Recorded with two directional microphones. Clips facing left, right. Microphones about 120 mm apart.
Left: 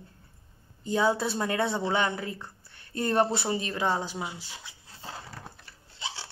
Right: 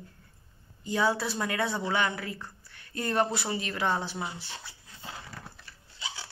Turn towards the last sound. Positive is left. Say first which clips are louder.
# left 2 dB
turn(degrees=30)  # may be behind; listen again after turning